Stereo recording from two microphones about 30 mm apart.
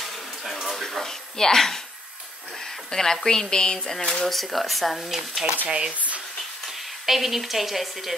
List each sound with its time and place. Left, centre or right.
0.0 s a sound: centre
0.8 s speech: centre
2.9 s speech: centre
4.1 s speech: centre
5.7 s speech: right
5.9 s a sound: right
7.1 s speech: centre